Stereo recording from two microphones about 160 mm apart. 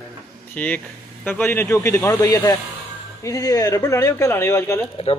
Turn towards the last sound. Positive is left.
turn(degrees=15)  # may be behind; listen again after turning